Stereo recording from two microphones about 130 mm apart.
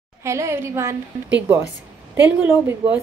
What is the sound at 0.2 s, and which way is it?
Speech, 20° right (ahead or behind).